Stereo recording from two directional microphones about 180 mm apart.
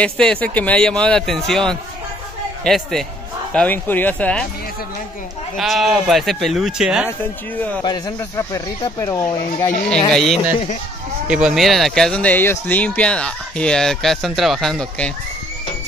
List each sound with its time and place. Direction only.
0.0 s speech: 5° left (ahead or behind)
5.6 s speech: centre (ahead or behind)
7.8 s speech: 25° left (ahead or behind)
9.8 s speech: 5° left (ahead or behind)
10.3 s speech: 35° left (ahead or behind)
11.2 s speech: 5° right (ahead or behind)